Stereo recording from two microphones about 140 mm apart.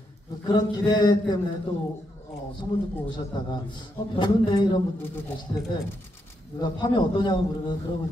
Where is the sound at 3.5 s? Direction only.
35° left (ahead or behind).